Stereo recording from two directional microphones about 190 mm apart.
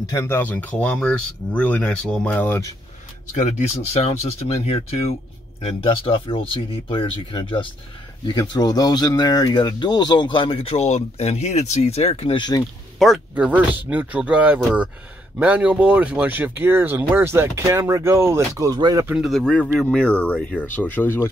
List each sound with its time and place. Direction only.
0.0 s speech: 15° left (ahead or behind)
3.3 s speech: 35° left (ahead or behind)
13.0 s speech: centre (ahead or behind); by 19.0 s 20° right (ahead or behind)
19.0 s speech: 5° right (ahead or behind)